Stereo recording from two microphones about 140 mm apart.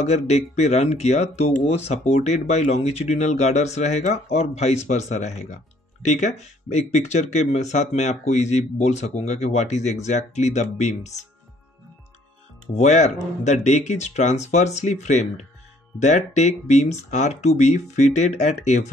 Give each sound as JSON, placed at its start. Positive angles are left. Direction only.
{"t": 0.0, "sound": "speech", "side_deg": 50}
{"t": 12.7, "sound": "speech", "side_deg": 55}